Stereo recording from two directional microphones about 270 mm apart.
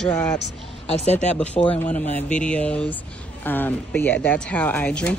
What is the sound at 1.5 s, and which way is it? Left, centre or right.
Speech, left.